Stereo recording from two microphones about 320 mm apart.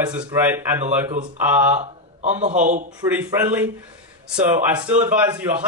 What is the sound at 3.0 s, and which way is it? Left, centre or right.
A man's voice, centre.